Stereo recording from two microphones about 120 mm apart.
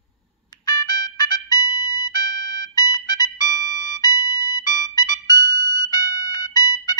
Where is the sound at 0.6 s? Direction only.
35° left (ahead or behind).